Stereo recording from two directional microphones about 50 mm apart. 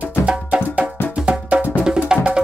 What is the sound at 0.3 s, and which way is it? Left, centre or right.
Music, right.